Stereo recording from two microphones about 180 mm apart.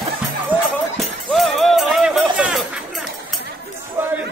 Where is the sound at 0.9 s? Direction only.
Centre (ahead or behind).